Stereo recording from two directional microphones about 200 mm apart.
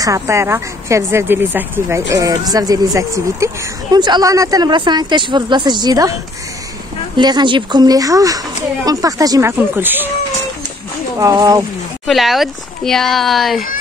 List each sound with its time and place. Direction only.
0.0 s speech: 15° right (ahead or behind)
7.2 s speech: 20° right (ahead or behind)
11.1 s speech: 15° right (ahead or behind)
12.1 s speech: centre (ahead or behind)